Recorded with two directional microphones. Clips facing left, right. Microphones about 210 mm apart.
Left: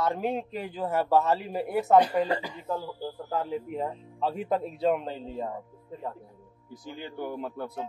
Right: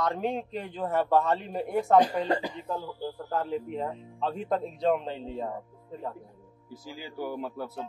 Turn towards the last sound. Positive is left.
turn(degrees=-5)  # may be behind; listen again after turning